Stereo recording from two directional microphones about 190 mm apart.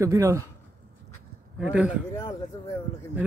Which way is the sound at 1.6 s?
5° right (ahead or behind).